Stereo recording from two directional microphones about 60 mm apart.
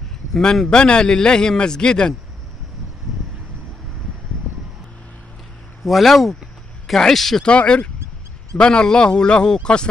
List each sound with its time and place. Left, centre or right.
0.3 s a man's voice: centre
5.9 s speech: centre
7.4 s a man's voice: centre